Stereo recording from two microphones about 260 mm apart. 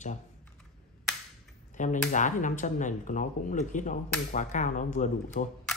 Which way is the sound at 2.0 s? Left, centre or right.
Left.